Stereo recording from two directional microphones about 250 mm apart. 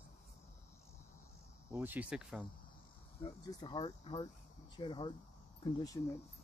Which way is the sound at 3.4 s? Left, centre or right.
Centre.